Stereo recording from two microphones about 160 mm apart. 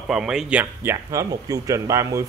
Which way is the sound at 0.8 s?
20° right (ahead or behind).